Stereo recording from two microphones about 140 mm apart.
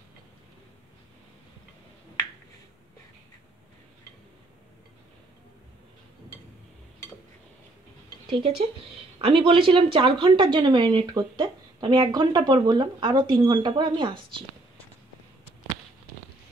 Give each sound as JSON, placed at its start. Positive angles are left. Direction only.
{"t": 8.3, "sound": "speech", "side_deg": -40}